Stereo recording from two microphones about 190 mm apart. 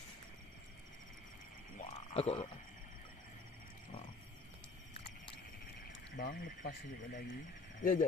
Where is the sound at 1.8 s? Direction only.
35° left (ahead or behind).